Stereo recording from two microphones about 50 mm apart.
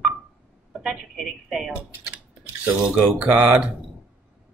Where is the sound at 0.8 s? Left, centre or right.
Centre.